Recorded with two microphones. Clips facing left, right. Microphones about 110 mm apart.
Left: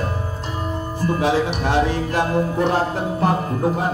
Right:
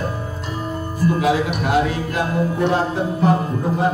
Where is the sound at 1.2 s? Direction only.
30° left (ahead or behind).